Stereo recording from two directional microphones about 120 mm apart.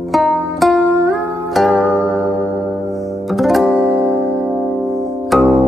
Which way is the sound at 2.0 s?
15° left (ahead or behind).